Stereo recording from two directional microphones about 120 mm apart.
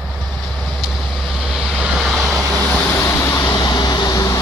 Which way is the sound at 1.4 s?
Centre (ahead or behind).